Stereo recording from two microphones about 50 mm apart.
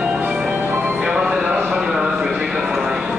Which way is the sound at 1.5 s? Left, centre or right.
Centre.